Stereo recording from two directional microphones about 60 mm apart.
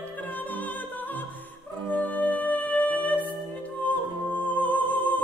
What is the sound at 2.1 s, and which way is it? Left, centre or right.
Music, left.